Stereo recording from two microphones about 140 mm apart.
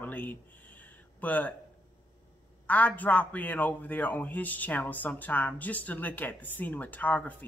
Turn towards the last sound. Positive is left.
turn(degrees=10)  # may be behind; listen again after turning